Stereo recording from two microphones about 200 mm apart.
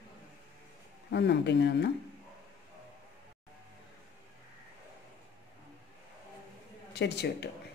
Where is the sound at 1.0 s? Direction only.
55° left (ahead or behind).